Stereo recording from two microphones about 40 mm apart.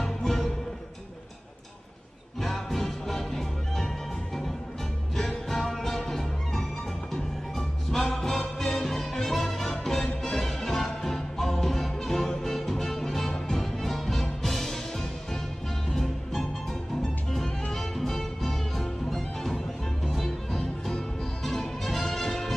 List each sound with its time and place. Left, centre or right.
0.0 s music: centre
2.4 s music: centre
5.1 s music: centre
17.7 s music: centre